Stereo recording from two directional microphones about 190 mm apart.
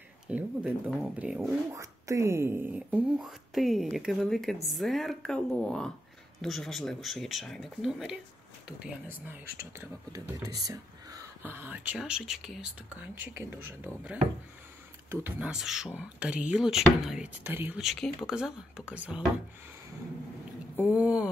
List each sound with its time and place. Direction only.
0.3 s speech: 10° right (ahead or behind)
1.7 s speech: 15° right (ahead or behind)
9.6 s speech: 15° right (ahead or behind)
20.8 s speech: 5° right (ahead or behind)